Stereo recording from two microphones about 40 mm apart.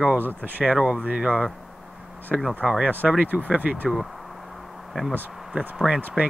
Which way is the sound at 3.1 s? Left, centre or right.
Right.